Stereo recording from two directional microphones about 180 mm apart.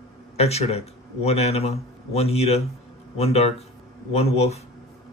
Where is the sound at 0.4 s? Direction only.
35° left (ahead or behind).